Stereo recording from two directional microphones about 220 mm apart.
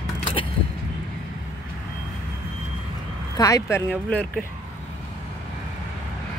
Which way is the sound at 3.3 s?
15° left (ahead or behind).